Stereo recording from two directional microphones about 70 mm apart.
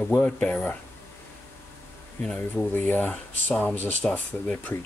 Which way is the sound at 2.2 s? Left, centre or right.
Centre.